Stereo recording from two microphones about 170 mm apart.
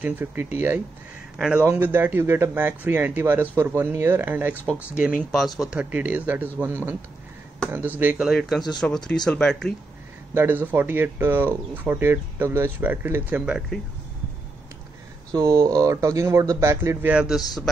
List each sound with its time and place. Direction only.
0.0 s speech: 10° right (ahead or behind)
4.6 s speech: 10° left (ahead or behind)
5.6 s speech: 5° right (ahead or behind)
10.3 s speech: 10° right (ahead or behind)
15.3 s speech: 20° right (ahead or behind)